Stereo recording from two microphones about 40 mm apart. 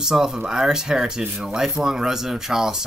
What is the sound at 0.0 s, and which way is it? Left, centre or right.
Speech, centre.